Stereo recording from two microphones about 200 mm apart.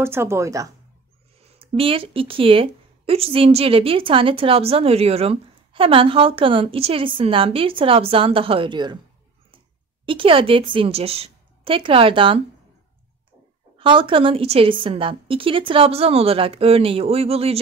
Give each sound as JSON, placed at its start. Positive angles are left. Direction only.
{"t": 0.0, "sound": "speech", "side_deg": -10}
{"t": 1.6, "sound": "a woman's voice", "side_deg": -25}
{"t": 10.0, "sound": "a woman's voice", "side_deg": -25}
{"t": 13.7, "sound": "a woman's voice", "side_deg": -25}